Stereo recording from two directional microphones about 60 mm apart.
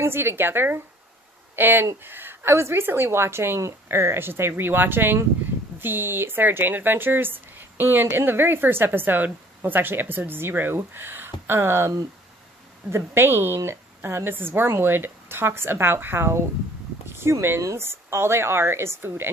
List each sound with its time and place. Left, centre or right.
0.0 s speech: right
12.9 s a woman's voice: right